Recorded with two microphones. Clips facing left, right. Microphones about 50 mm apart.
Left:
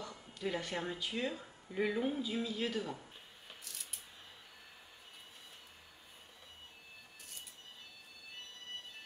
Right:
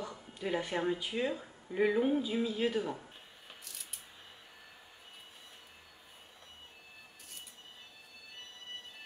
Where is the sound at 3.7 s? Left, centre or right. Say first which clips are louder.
Left 1 dB; centre.